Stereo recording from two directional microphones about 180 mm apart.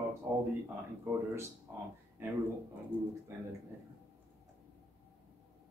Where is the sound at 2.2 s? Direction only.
15° right (ahead or behind).